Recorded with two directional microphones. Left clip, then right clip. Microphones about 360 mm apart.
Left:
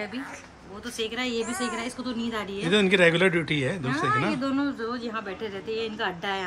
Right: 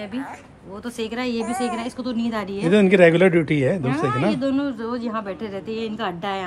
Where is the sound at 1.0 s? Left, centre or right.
Right.